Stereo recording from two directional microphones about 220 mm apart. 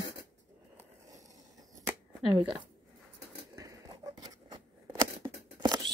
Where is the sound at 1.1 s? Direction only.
15° right (ahead or behind).